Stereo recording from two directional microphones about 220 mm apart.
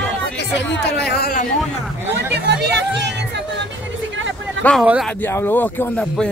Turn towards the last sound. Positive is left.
turn(degrees=5)  # may be behind; listen again after turning